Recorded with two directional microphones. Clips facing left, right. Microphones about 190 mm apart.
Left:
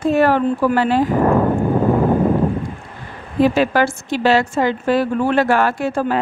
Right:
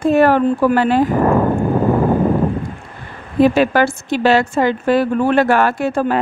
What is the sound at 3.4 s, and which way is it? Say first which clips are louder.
A woman's voice: right 2 dB; 55° right (ahead or behind).